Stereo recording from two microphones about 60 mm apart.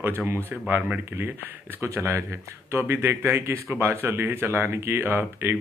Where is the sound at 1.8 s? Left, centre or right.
Right.